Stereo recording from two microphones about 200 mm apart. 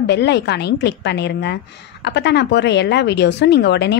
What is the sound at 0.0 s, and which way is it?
A woman's voice, 60° left (ahead or behind).